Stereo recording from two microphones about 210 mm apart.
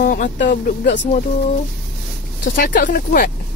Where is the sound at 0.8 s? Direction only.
60° left (ahead or behind).